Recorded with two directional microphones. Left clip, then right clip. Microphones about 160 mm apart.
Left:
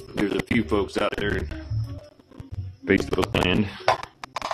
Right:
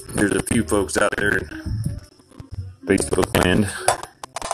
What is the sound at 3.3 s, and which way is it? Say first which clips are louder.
Speech: right 4 dB; 40° right (ahead or behind).